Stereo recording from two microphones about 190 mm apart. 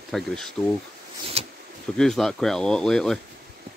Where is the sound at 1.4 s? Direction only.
30° right (ahead or behind).